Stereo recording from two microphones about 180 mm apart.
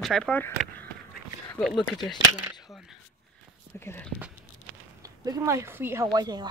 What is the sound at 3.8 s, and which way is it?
Speech, 10° left (ahead or behind).